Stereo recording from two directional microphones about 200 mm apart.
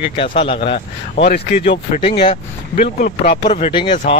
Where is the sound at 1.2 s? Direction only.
55° left (ahead or behind).